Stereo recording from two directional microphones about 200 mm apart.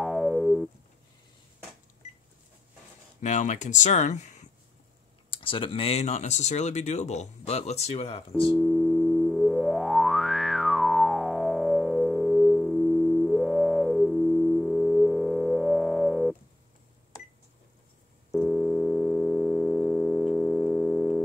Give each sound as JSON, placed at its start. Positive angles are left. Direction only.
{"t": 0.0, "sound": "synthesizer", "side_deg": 0}
{"t": 3.2, "sound": "speech", "side_deg": 40}
{"t": 5.3, "sound": "speech", "side_deg": 25}
{"t": 8.5, "sound": "music", "side_deg": 0}
{"t": 18.3, "sound": "busy signal", "side_deg": 0}